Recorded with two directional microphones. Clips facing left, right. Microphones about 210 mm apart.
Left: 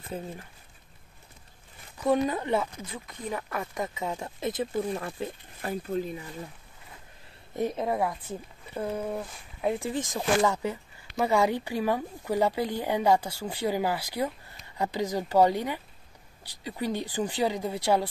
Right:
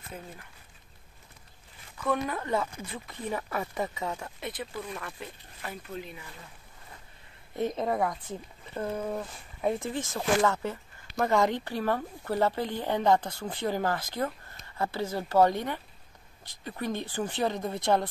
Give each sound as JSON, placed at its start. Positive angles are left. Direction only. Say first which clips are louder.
{"t": 2.1, "sound": "speech", "louder": "left 5 dB", "side_deg": 20}
{"t": 3.1, "sound": "speech", "louder": "right 1 dB", "side_deg": -5}
{"t": 4.0, "sound": "speech", "louder": "left 4 dB", "side_deg": 15}
{"t": 7.5, "sound": "speech", "louder": "left 1 dB", "side_deg": 10}